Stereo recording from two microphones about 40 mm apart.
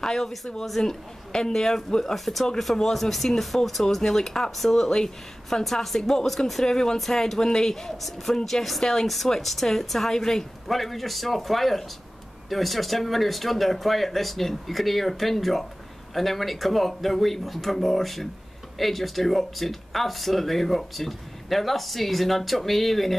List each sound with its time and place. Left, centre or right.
0.0 s speech: centre
10.7 s speech: centre